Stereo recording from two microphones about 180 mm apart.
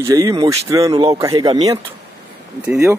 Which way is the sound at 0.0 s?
15° right (ahead or behind).